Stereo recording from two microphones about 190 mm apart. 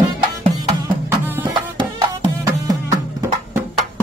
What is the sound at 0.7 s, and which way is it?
Music, 10° right (ahead or behind).